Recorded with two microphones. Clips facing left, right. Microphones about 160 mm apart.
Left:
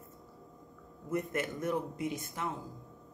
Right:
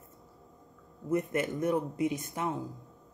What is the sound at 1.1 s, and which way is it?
Speech, 20° right (ahead or behind).